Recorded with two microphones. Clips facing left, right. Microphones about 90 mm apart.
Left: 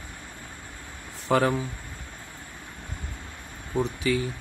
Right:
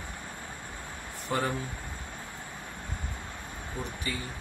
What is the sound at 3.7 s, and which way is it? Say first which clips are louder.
Speech: left 12 dB; 85° left.